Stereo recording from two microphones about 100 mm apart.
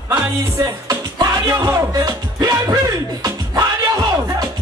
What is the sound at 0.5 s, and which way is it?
Music, 40° right (ahead or behind).